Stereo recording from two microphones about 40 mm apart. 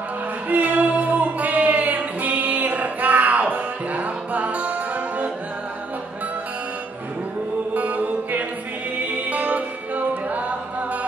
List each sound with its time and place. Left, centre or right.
0.5 s music: right
7.7 s music: right